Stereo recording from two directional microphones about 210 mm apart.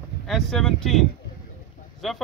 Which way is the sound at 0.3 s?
Centre (ahead or behind).